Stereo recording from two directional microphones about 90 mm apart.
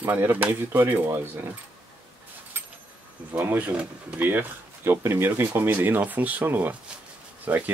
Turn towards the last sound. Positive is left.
turn(degrees=-20)  # may be behind; listen again after turning